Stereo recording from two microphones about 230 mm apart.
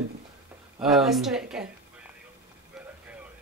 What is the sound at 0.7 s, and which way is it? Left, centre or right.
Speech, centre.